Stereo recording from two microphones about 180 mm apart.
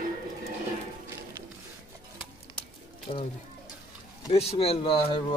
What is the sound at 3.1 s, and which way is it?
Speech, 45° left (ahead or behind).